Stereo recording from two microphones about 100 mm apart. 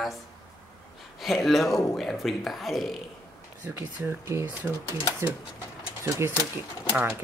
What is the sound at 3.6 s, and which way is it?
Speech, 20° right (ahead or behind).